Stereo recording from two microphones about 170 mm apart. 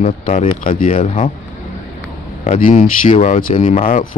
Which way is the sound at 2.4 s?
45° left (ahead or behind).